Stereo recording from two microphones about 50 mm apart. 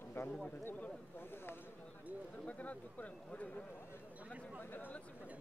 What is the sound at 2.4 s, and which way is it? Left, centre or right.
Speech, left.